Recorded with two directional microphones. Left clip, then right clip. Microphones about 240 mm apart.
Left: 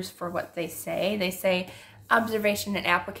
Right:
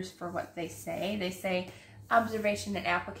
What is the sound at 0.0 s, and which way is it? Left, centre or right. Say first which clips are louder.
Speech: left 5 dB; left.